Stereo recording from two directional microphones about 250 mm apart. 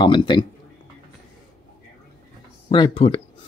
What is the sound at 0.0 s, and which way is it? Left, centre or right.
Speech, centre.